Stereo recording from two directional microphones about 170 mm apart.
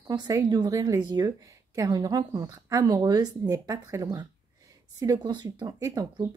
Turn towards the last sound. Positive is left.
turn(degrees=-20)  # may be behind; listen again after turning